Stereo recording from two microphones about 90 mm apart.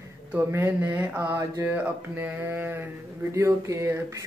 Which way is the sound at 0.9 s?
20° right (ahead or behind).